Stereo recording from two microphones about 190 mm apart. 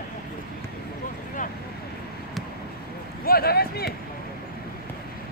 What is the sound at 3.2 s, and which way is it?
Speech, 55° left (ahead or behind).